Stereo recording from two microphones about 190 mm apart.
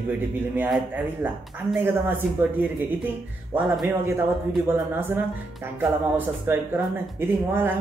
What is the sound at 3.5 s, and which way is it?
Speech, 25° right (ahead or behind).